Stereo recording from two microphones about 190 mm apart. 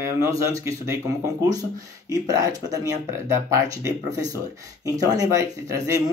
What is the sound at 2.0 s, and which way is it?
Speech, 20° right (ahead or behind).